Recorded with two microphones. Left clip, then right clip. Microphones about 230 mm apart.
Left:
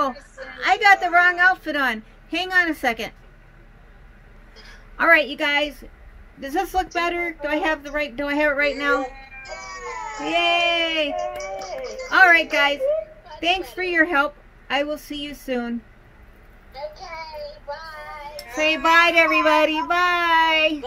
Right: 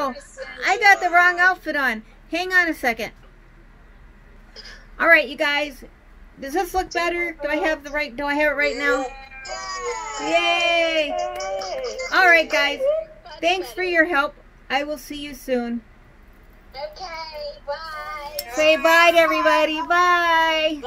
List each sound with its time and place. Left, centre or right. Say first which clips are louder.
0.6 s a woman's voice: even; centre
4.9 s a woman's voice: right 1 dB; centre
8.9 s child singing: left 1 dB; right
10.2 s a woman's voice: even; centre
11.1 s a child's voice: right 2 dB; right
12.1 s a woman's voice: left 1 dB; centre
16.7 s child singing: right 1 dB; right
18.6 s a woman's voice: right 2 dB; centre